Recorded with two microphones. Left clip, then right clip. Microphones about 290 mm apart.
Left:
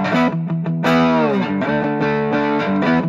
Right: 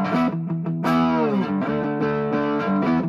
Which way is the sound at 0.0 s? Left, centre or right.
Left.